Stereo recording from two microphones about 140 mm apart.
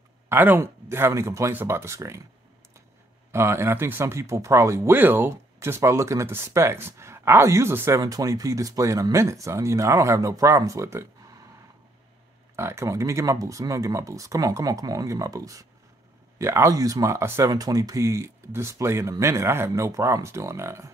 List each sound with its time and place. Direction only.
0.3 s speech: 15° right (ahead or behind)
3.3 s speech: 20° right (ahead or behind)
12.5 s speech: 20° right (ahead or behind)